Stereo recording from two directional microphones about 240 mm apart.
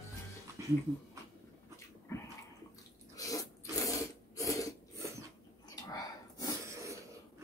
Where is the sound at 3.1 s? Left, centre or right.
Centre.